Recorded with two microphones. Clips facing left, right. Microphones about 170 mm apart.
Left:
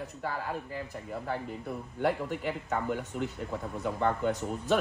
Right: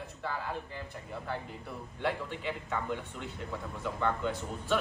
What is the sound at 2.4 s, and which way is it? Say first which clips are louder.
A man's voice: left 4 dB; 45° left (ahead or behind).